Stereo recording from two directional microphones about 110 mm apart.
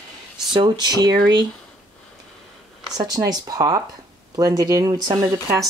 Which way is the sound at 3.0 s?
35° right (ahead or behind).